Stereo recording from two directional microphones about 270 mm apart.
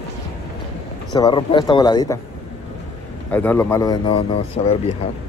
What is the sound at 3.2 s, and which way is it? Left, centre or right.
Speech, centre.